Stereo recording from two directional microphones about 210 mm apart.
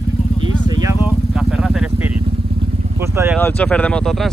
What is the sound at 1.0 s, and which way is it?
Vehicle, 5° right (ahead or behind).